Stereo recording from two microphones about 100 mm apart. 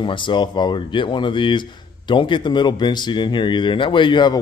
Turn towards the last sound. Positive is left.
turn(degrees=50)  # may be behind; listen again after turning